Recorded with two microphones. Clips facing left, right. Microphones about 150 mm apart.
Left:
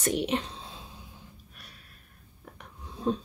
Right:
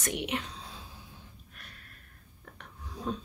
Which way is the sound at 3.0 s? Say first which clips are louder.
Left 6 dB; 30° left (ahead or behind).